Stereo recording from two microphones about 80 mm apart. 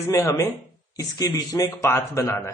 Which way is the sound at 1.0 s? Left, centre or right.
Left.